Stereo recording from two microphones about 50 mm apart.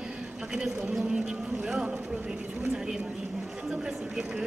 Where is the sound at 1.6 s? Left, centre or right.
Centre.